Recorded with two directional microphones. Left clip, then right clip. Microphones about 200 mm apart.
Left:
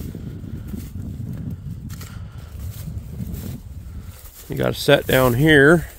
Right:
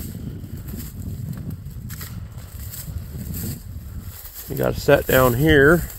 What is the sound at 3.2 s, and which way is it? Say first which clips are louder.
Boat: left 3 dB; 60° right (ahead or behind).